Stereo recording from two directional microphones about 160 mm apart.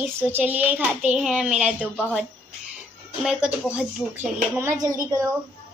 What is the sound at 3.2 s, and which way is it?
A child's voice, 5° right (ahead or behind).